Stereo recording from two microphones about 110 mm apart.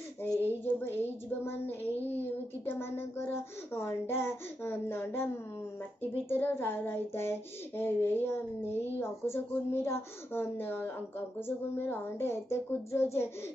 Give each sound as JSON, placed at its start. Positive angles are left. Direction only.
{"t": 0.4, "sound": "child singing", "side_deg": 20}
{"t": 6.2, "sound": "child singing", "side_deg": 20}